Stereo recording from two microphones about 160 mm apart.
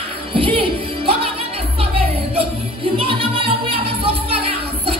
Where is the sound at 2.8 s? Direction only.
35° right (ahead or behind).